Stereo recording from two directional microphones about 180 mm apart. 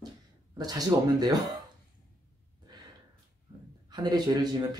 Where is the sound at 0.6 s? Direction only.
20° right (ahead or behind).